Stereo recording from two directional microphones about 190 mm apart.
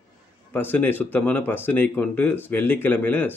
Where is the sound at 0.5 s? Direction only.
10° left (ahead or behind).